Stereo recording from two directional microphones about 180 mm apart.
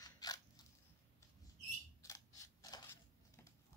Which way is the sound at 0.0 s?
20° left (ahead or behind).